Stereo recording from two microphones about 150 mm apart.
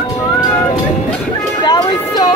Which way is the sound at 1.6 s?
30° left (ahead or behind).